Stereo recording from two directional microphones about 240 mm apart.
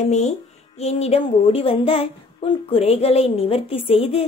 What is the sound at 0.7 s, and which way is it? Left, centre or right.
Speech, left.